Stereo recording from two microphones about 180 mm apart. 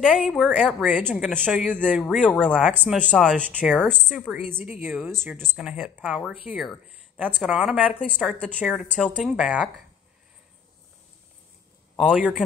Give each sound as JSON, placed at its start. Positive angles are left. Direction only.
{"t": 0.0, "sound": "speech", "side_deg": -5}
{"t": 2.0, "sound": "speech", "side_deg": 0}
{"t": 2.5, "sound": "speech", "side_deg": -10}
{"t": 3.1, "sound": "speech", "side_deg": 0}
{"t": 3.3, "sound": "speech", "side_deg": -10}
{"t": 8.8, "sound": "speech", "side_deg": 5}
{"t": 9.1, "sound": "speech", "side_deg": -5}
{"t": 12.0, "sound": "speech", "side_deg": -5}